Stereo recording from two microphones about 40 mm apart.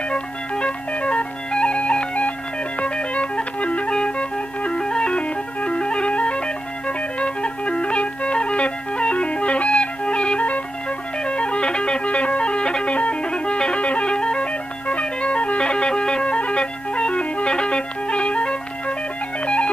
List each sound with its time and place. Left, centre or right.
0.1 s music: left
16.3 s music: left